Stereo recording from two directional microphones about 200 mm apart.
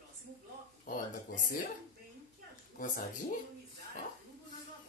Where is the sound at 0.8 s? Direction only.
45° left (ahead or behind).